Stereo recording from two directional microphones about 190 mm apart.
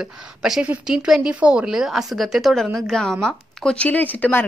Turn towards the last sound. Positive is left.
turn(degrees=10)  # may be behind; listen again after turning